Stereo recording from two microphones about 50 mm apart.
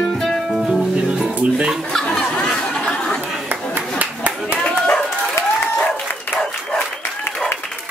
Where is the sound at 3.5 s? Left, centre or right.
Right.